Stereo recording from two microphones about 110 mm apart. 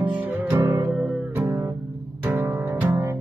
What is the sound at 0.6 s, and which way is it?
Music, 25° right (ahead or behind).